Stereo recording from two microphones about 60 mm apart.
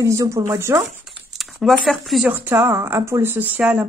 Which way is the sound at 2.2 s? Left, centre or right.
Right.